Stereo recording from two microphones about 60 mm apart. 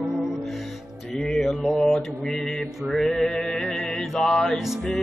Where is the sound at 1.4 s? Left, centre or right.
Centre.